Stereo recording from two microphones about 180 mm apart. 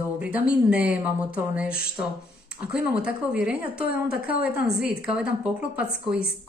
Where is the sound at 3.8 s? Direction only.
55° left (ahead or behind).